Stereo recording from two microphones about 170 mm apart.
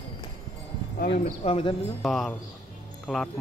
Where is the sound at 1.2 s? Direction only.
35° left (ahead or behind).